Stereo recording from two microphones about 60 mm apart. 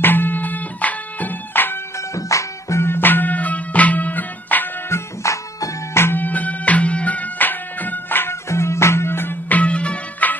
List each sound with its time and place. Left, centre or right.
0.0 s music: left
2.1 s music: left
2.8 s music: left
4.8 s music: left
5.9 s music: left
6.2 s music: left
8.5 s music: left